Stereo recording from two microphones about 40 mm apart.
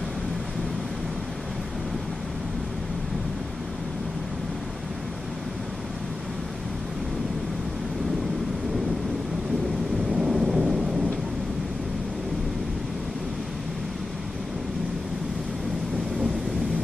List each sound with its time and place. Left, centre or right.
10.1 s thunder: centre